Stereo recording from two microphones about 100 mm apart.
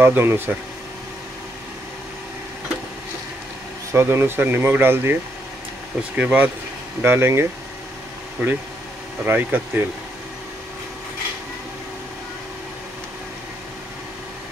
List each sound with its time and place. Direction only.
0.0 s speech: 25° right (ahead or behind)
3.9 s speech: 25° right (ahead or behind)
5.9 s speech: 10° right (ahead or behind)
7.0 s speech: 25° right (ahead or behind)
9.2 s speech: 20° right (ahead or behind)